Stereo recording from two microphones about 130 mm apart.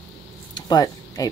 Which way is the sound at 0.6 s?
30° left (ahead or behind).